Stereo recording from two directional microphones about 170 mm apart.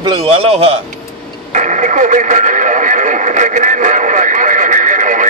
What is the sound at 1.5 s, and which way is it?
Radio, 45° right (ahead or behind).